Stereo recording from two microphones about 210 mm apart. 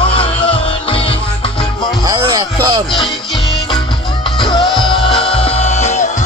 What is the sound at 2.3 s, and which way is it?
Music, 25° right (ahead or behind).